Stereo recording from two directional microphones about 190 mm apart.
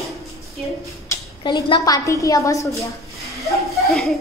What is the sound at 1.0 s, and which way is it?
A woman's voice, 25° left (ahead or behind).